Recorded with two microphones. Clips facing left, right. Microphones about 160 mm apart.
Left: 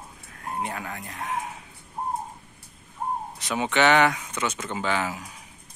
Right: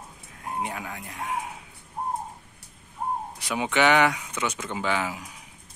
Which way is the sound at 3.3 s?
10° right (ahead or behind).